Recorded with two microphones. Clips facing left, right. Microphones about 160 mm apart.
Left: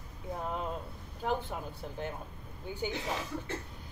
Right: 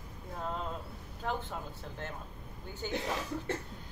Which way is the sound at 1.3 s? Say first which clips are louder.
Left 3 dB; 15° left (ahead or behind).